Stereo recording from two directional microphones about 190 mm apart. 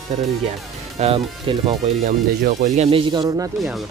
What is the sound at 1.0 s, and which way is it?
Speech, 25° right (ahead or behind).